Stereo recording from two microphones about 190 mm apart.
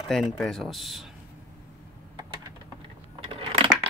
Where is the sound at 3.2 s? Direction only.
30° right (ahead or behind).